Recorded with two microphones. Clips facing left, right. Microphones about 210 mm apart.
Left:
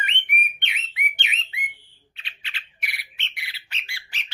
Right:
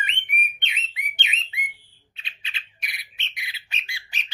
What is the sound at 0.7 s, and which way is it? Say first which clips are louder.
Bird: left 2 dB; 20° right (ahead or behind).